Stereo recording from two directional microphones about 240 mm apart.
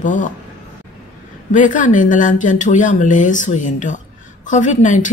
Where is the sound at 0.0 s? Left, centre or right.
Left.